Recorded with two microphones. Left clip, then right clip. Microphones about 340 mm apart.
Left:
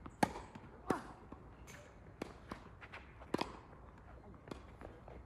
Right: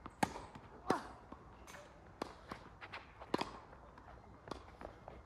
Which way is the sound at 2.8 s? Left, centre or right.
Right.